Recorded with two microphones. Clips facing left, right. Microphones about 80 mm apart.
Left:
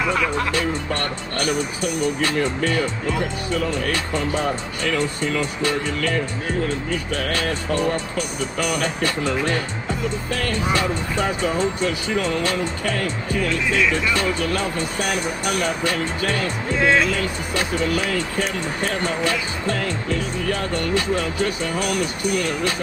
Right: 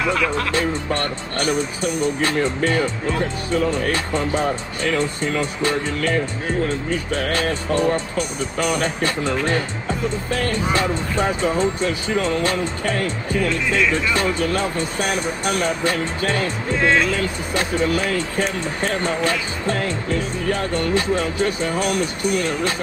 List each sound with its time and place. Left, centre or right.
0.1 s speech: centre
0.5 s speech: right
4.9 s speech: right
7.3 s speech: right
14.1 s speech: right
16.7 s speech: centre
19.2 s speech: right